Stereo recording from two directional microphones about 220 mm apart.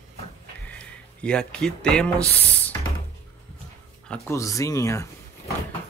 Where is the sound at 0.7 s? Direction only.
5° left (ahead or behind).